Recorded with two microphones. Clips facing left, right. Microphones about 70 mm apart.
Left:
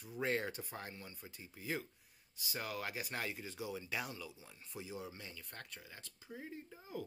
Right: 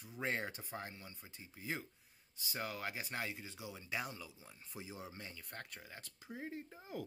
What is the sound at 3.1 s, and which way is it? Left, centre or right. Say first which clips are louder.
Speech: left 1 dB; centre.